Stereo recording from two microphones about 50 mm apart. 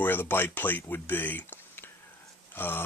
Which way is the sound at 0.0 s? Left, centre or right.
Left.